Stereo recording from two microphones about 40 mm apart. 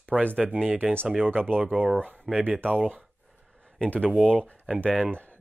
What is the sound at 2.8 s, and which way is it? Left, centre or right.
Speech, right.